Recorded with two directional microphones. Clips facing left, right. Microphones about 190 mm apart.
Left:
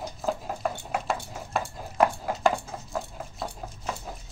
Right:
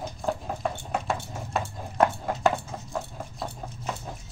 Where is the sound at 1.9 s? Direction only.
Centre (ahead or behind).